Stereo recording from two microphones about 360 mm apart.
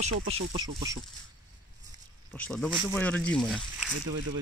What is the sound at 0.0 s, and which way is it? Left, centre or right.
Speech, centre.